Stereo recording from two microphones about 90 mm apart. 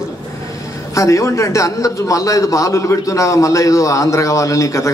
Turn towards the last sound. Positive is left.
turn(degrees=35)  # may be behind; listen again after turning